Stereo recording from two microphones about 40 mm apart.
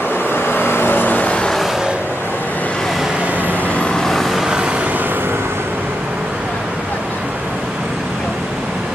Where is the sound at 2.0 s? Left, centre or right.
Left.